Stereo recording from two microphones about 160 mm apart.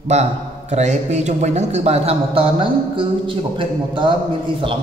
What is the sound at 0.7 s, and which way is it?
Speech, 45° right (ahead or behind).